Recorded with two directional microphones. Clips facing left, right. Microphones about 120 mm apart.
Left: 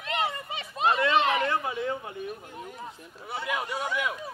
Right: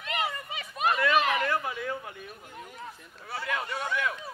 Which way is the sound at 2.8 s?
20° left (ahead or behind).